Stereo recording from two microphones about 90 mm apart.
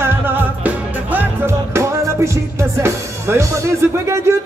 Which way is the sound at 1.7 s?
35° right (ahead or behind).